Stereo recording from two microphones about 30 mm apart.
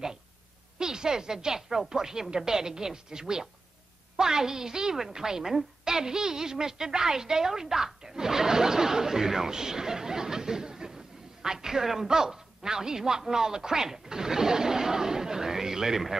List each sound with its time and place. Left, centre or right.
0.7 s a woman's voice: right